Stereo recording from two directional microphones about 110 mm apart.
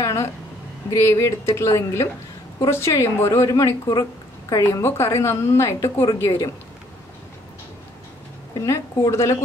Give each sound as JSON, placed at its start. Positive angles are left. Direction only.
{"t": 0.0, "sound": "a sound", "side_deg": 30}
{"t": 0.8, "sound": "a woman's voice", "side_deg": 30}
{"t": 8.6, "sound": "a woman's voice", "side_deg": 25}